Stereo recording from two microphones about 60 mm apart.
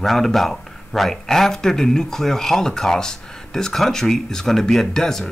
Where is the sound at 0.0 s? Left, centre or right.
Centre.